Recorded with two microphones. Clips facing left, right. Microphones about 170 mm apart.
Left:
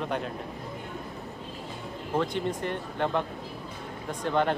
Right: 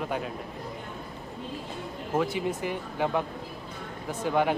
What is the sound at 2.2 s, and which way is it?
A man's voice, 5° right (ahead or behind).